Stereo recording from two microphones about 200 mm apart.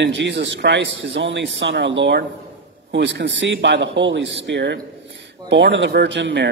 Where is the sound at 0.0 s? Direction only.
60° right (ahead or behind).